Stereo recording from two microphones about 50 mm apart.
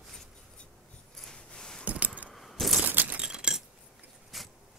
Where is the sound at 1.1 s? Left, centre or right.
Centre.